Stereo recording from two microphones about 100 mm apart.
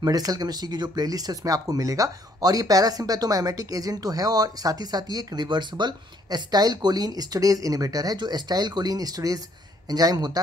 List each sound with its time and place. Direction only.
0.0 s speech: 40° right (ahead or behind)